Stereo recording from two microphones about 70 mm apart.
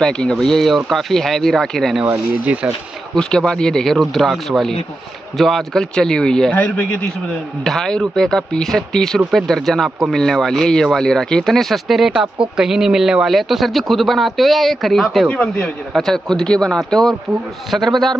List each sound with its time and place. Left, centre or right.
0.0 s speech: centre
2.4 s speech: centre
3.2 s speech: centre
6.5 s a man's voice: left
7.6 s speech: centre